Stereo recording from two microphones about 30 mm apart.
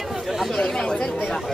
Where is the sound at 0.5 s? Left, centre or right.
Centre.